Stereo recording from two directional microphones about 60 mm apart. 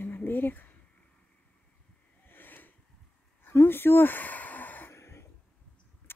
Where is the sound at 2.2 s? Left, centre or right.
Left.